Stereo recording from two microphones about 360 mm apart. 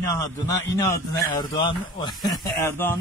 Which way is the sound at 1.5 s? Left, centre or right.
Centre.